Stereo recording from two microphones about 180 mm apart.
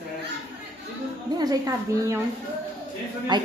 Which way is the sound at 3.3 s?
25° right (ahead or behind).